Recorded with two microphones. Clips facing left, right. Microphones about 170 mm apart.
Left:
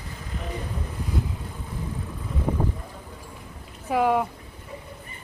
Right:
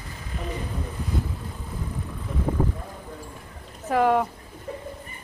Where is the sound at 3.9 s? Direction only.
5° left (ahead or behind).